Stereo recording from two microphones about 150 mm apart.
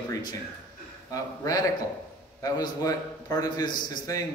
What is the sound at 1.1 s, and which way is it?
A man's voice, 25° left (ahead or behind).